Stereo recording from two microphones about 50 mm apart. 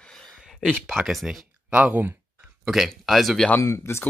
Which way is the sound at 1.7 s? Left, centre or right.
Right.